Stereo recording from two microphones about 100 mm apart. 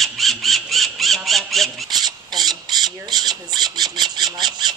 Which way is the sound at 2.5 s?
45° right (ahead or behind).